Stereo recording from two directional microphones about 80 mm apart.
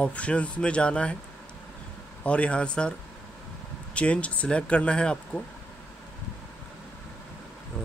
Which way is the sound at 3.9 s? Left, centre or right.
Centre.